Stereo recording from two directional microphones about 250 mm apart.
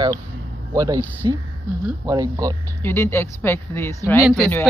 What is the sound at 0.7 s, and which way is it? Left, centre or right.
Speech, centre.